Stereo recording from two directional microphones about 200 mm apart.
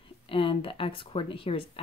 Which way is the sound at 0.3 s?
25° left (ahead or behind).